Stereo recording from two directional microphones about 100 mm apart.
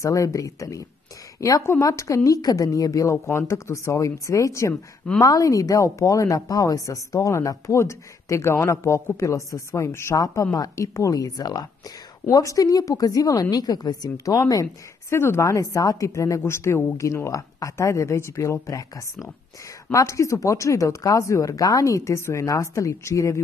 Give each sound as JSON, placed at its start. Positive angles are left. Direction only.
{"t": 0.0, "sound": "a woman's voice", "side_deg": 35}